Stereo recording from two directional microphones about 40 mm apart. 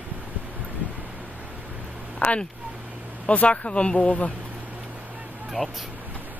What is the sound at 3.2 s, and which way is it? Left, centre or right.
Speech, left.